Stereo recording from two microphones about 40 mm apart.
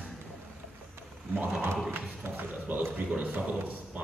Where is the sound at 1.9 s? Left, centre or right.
Right.